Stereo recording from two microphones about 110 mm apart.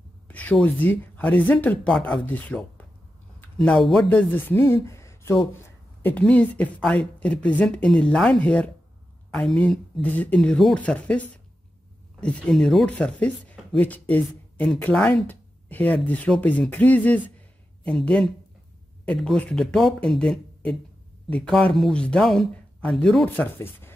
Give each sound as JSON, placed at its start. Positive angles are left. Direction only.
{"t": 0.3, "sound": "speech", "side_deg": 10}
{"t": 4.1, "sound": "speech", "side_deg": 15}
{"t": 6.0, "sound": "speech", "side_deg": 15}
{"t": 10.0, "sound": "speech", "side_deg": 15}
{"t": 12.2, "sound": "speech", "side_deg": 10}
{"t": 23.3, "sound": "speech", "side_deg": 20}